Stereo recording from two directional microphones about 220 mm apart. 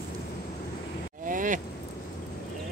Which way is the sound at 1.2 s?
35° right (ahead or behind).